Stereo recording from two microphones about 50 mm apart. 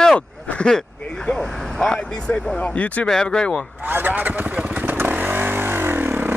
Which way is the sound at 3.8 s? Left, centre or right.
Right.